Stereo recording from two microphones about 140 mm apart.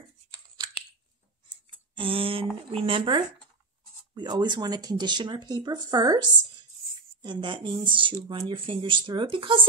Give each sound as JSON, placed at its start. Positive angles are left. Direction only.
{"t": 1.7, "sound": "tick", "side_deg": -40}
{"t": 2.7, "sound": "speech", "side_deg": -40}